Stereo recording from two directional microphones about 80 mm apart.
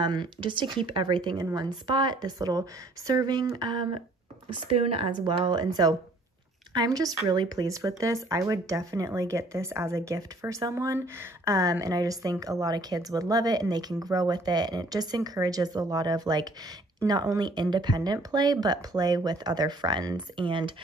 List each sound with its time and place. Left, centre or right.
0.0 s speech: right
1.4 s speech: right
2.0 s speech: right
3.5 s speech: right
5.0 s speech: right
11.8 s speech: right